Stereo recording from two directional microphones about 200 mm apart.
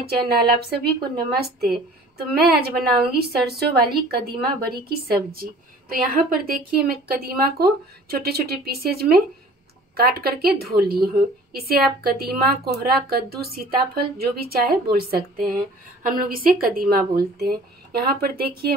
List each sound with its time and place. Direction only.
0.0 s a woman's voice: 55° right (ahead or behind)